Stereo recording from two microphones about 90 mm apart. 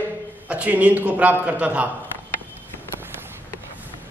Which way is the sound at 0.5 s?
15° right (ahead or behind).